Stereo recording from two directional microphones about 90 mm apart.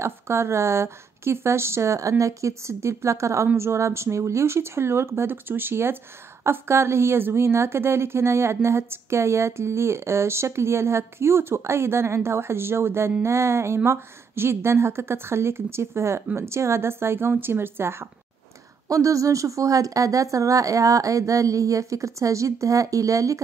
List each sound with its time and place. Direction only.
0.0 s speech: 30° right (ahead or behind)